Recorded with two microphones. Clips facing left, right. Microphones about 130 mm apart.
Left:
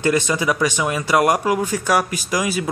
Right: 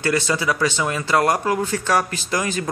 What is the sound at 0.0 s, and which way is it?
A man's voice, 15° left (ahead or behind).